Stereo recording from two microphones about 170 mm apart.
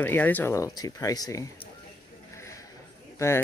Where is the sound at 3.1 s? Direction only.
15° left (ahead or behind).